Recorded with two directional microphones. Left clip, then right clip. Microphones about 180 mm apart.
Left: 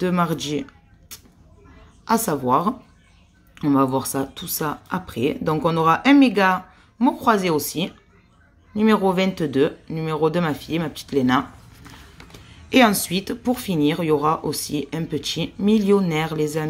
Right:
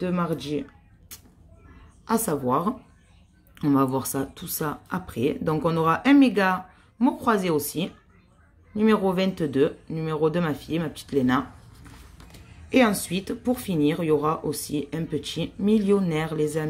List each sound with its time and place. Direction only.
0.0 s speech: 20° left (ahead or behind)
1.1 s a sound: centre (ahead or behind)
2.0 s speech: 5° left (ahead or behind)
11.8 s speech: 15° left (ahead or behind)